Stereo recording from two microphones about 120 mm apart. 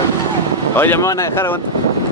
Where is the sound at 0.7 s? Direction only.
20° left (ahead or behind).